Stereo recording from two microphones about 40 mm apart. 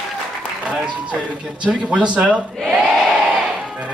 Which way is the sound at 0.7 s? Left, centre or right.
Right.